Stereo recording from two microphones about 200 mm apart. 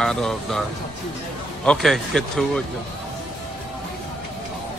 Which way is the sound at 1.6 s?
5° left (ahead or behind).